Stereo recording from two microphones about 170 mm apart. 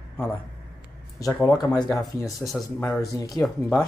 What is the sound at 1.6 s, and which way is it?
Speech, 25° left (ahead or behind).